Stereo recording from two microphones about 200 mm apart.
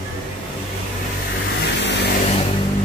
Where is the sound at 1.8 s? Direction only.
60° left (ahead or behind).